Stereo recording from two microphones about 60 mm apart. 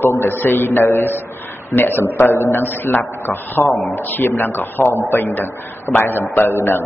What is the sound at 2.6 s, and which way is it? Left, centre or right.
A man's voice, left.